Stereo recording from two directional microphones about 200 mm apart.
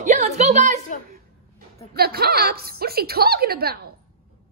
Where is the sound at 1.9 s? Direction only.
50° right (ahead or behind).